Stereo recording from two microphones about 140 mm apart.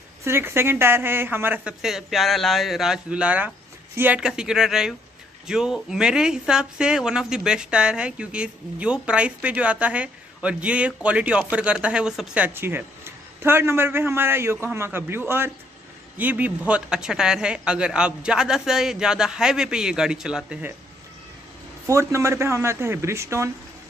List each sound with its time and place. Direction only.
0.2 s speech: 15° right (ahead or behind)
21.8 s speech: 20° right (ahead or behind)